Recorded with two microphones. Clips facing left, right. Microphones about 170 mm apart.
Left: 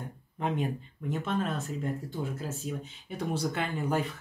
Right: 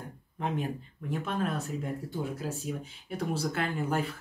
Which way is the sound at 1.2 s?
10° right (ahead or behind).